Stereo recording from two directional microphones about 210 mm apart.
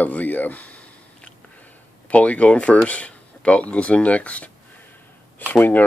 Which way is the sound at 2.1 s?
5° left (ahead or behind).